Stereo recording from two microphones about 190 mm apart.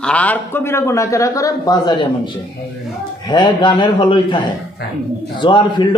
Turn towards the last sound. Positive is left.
turn(degrees=25)  # may be behind; listen again after turning